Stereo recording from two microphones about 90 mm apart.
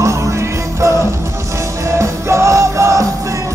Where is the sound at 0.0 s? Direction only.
35° right (ahead or behind).